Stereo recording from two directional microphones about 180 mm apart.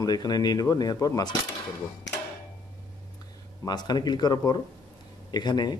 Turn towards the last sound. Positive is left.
turn(degrees=25)  # may be behind; listen again after turning